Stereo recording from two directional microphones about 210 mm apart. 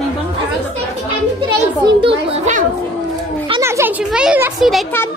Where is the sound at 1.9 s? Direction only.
25° right (ahead or behind).